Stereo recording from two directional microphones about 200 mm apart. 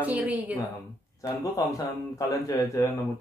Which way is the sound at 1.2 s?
15° left (ahead or behind).